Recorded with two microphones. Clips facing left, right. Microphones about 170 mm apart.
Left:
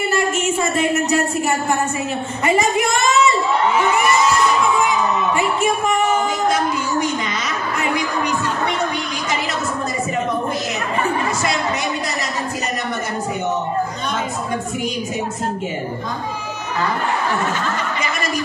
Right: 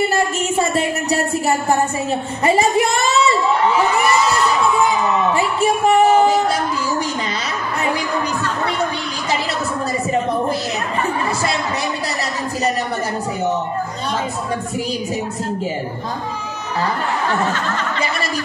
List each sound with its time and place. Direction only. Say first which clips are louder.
2.4 s a woman's voice: right 2 dB; 30° right (ahead or behind)
4.8 s music: right 2 dB; 35° right (ahead or behind)